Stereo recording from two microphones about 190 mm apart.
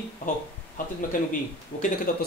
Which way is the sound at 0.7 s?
45° left (ahead or behind).